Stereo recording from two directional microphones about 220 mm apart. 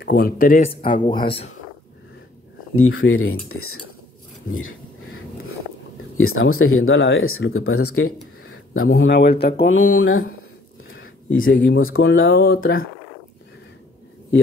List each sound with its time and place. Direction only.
0.0 s speech: 45° left (ahead or behind)
0.7 s speech: 25° left (ahead or behind)
2.7 s speech: 70° left (ahead or behind)
6.1 s speech: 65° left (ahead or behind); by 9.5 s 50° left (ahead or behind)
9.7 s speech: 65° left (ahead or behind)
10.9 s a sound: 65° left (ahead or behind)
11.5 s speech: 60° left (ahead or behind)